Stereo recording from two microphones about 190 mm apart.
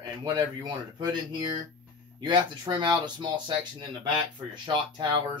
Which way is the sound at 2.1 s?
25° right (ahead or behind).